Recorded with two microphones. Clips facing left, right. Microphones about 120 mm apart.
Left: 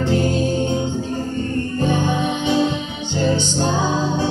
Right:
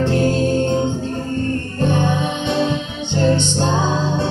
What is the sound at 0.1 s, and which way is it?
Music, 5° left (ahead or behind).